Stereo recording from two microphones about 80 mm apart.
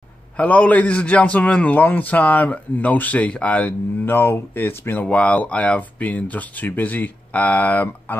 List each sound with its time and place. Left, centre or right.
0.4 s a man's voice: centre